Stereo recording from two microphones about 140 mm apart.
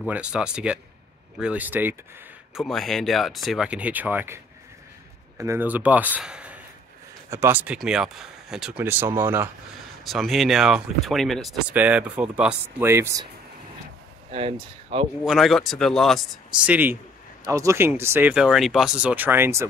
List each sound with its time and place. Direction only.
0.0 s speech: 10° right (ahead or behind)
2.5 s speech: centre (ahead or behind)
5.4 s speech: 15° right (ahead or behind)
8.8 s speech: 15° right (ahead or behind)
10.0 s speech: centre (ahead or behind)
11.7 s speech: 10° right (ahead or behind)
14.3 s speech: 40° right (ahead or behind)
15.2 s speech: centre (ahead or behind)
16.6 s speech: 15° right (ahead or behind)
18.3 s speech: 5° right (ahead or behind)